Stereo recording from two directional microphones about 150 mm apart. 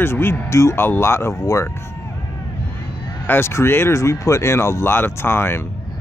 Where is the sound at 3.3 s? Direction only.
15° left (ahead or behind).